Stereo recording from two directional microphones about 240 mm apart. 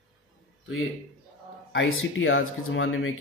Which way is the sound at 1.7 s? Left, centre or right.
Left.